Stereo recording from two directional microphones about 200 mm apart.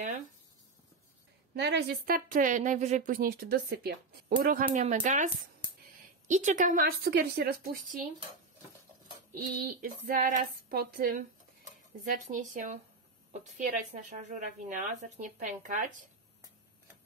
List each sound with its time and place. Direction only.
1.5 s a woman's voice: 55° right (ahead or behind)
9.3 s a woman's voice: 45° right (ahead or behind)
12.3 s a woman's voice: 40° right (ahead or behind)